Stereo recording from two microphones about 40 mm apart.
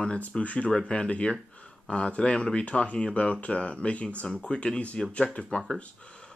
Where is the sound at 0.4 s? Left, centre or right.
Left.